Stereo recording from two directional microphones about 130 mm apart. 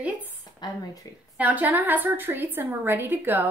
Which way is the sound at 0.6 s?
30° left (ahead or behind).